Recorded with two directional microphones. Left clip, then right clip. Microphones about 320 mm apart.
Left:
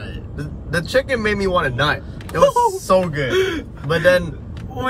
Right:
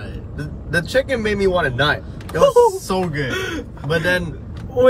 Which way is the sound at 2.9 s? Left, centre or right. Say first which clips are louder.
Left 5 dB; centre.